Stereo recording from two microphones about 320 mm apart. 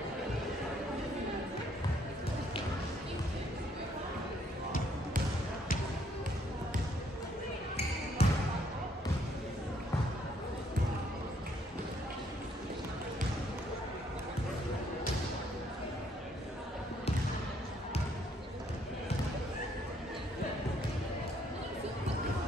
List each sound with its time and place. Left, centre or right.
8.2 s basketball bounce: centre